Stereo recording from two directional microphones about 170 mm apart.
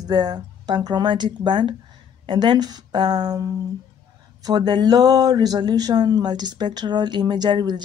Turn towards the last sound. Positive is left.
turn(degrees=-25)  # may be behind; listen again after turning